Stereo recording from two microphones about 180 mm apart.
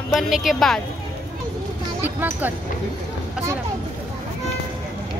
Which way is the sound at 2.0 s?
10° right (ahead or behind).